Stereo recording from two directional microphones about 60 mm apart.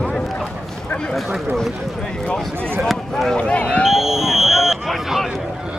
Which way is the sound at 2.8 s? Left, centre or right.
Centre.